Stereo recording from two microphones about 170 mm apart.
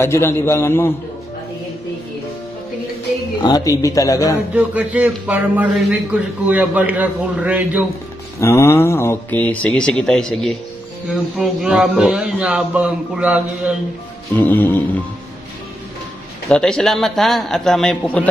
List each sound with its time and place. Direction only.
0.0 s speech: 15° left (ahead or behind)
3.4 s a man's voice: 20° left (ahead or behind)
4.6 s a man's voice: 5° right (ahead or behind)
8.4 s speech: 15° left (ahead or behind); by 13.7 s 5° right (ahead or behind)
14.3 s speech: 10° left (ahead or behind)
16.4 s speech: 5° left (ahead or behind)